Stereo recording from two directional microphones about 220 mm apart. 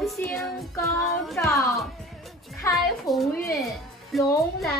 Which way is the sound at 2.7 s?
Centre (ahead or behind).